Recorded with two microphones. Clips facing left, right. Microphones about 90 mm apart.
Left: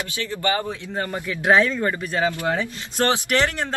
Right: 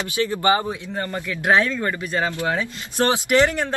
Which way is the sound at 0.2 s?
20° right (ahead or behind).